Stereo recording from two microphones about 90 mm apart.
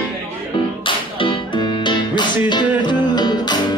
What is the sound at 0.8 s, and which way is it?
Music, 75° left (ahead or behind).